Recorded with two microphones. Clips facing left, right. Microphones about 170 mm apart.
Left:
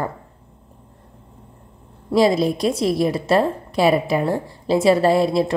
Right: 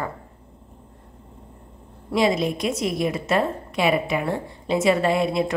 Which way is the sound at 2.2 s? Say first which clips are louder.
Left 4 dB; 35° left (ahead or behind).